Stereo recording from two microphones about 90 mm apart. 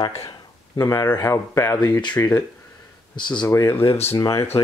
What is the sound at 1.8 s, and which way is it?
Speech, 50° left (ahead or behind).